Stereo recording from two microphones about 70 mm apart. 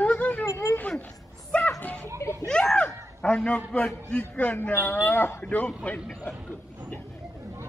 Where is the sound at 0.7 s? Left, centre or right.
Centre.